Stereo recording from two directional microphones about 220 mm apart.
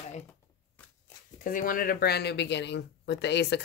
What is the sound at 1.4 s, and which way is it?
Speech, 40° left (ahead or behind).